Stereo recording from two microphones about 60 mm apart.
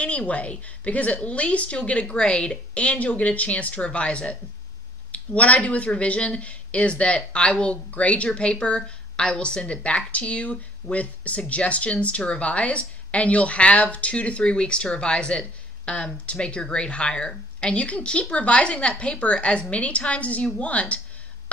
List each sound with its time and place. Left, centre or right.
0.0 s a woman's voice: left